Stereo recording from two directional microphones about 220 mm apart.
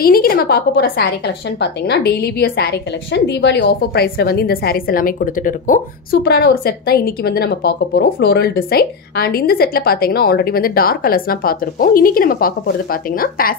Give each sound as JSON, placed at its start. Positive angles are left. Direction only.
{"t": 0.0, "sound": "a woman's voice", "side_deg": 40}